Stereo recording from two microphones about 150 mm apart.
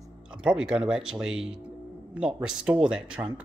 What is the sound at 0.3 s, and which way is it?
Speech, 5° right (ahead or behind).